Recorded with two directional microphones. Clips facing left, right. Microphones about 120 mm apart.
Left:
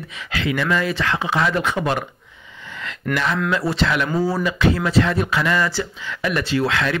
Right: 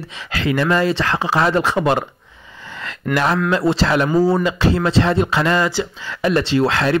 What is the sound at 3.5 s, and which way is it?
Speech, 30° right (ahead or behind).